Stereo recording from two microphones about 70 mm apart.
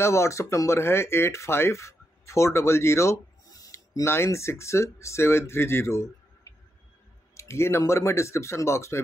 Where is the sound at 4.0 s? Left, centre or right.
Left.